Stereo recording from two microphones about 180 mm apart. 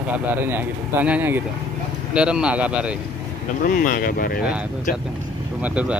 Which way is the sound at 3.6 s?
50° left (ahead or behind).